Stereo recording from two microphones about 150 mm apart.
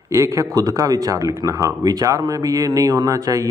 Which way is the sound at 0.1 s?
20° right (ahead or behind).